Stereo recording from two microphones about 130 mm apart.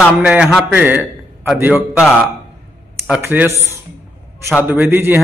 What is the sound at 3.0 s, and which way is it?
Speech, 10° right (ahead or behind).